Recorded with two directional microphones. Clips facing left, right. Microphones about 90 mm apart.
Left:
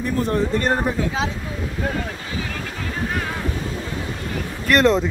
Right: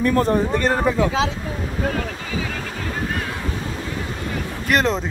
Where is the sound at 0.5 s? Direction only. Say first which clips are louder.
Right 1 dB; 90° right.